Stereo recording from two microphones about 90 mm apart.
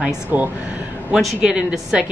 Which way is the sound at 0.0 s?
20° right (ahead or behind).